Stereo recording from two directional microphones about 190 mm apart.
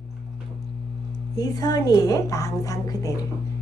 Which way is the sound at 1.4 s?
20° left (ahead or behind).